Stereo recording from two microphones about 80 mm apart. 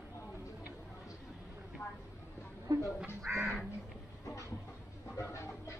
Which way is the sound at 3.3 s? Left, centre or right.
Centre.